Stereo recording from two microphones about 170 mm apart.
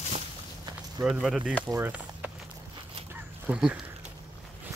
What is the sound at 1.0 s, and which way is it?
Speech, 5° right (ahead or behind).